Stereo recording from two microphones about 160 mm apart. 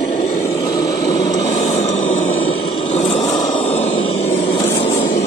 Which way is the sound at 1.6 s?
45° left (ahead or behind).